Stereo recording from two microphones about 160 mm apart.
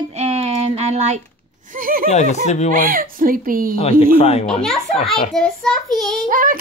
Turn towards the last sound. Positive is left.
turn(degrees=-60)  # may be behind; listen again after turning